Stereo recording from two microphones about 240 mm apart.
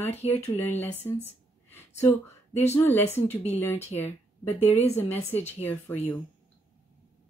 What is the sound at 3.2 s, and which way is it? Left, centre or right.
Speech, left.